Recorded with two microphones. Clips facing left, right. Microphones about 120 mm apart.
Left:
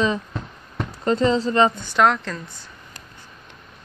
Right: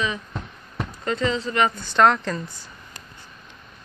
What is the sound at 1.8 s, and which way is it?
Speech, 5° left (ahead or behind).